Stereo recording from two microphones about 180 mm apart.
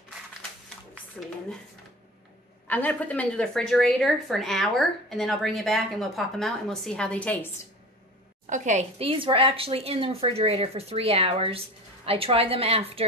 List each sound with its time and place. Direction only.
2.7 s a woman's voice: 10° left (ahead or behind)
8.5 s speech: 40° right (ahead or behind)